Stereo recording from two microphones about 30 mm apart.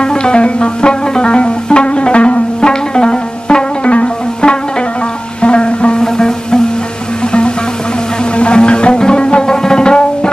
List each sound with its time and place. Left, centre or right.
0.0 s music: left
6.1 s music: left
8.4 s music: left
9.5 s tabla: left